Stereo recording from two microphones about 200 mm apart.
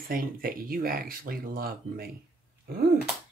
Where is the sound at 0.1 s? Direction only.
45° right (ahead or behind).